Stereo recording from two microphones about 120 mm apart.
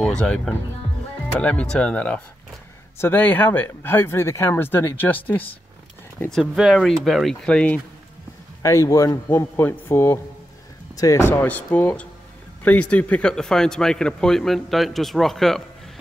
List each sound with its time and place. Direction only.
0.0 s speech: 10° left (ahead or behind)
6.3 s speech: 5° right (ahead or behind)
8.6 s a man's voice: 25° left (ahead or behind); by 15.6 s centre (ahead or behind)